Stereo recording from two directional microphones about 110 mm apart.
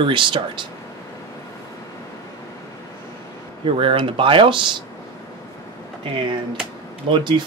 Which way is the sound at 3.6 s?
50° right (ahead or behind).